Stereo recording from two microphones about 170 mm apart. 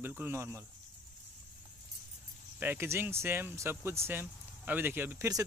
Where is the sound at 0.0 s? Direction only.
10° right (ahead or behind).